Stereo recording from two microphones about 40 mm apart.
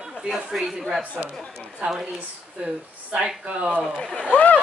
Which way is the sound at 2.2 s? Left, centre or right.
Right.